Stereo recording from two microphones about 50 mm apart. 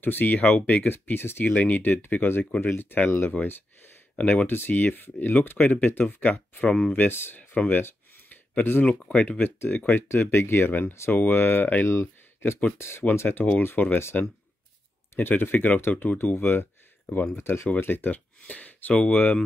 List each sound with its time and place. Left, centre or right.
0.0 s speech: left
1.0 s speech: left
1.5 s speech: left
4.2 s speech: left
4.5 s speech: left
7.5 s speech: left
7.8 s a sound: left
9.0 s speech: centre
10.0 s speech: left
13.6 s speech: left
15.2 s speech: left